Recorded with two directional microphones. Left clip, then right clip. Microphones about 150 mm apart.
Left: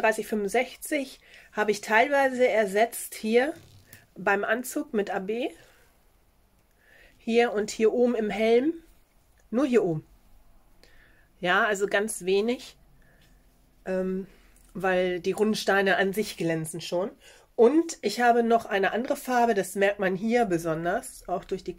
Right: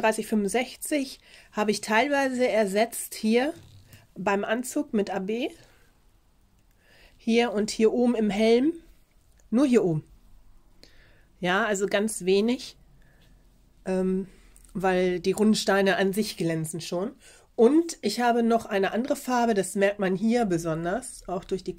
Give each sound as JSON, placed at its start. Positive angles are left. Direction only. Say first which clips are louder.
{"t": 0.0, "sound": "speech", "louder": "even", "side_deg": -35}
{"t": 6.9, "sound": "speech", "louder": "right 2 dB", "side_deg": -35}
{"t": 13.8, "sound": "speech", "louder": "right 2 dB", "side_deg": -40}